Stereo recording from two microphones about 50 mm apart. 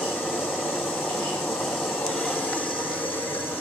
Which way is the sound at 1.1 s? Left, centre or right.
Centre.